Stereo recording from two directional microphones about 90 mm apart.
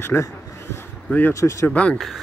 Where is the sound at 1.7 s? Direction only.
15° left (ahead or behind).